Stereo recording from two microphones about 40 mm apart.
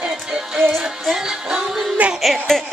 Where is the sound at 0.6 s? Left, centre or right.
Centre.